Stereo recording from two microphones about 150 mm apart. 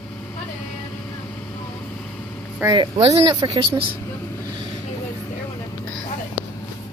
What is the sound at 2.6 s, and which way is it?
Speech, 15° right (ahead or behind).